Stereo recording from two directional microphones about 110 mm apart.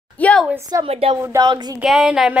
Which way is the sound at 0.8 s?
60° right (ahead or behind).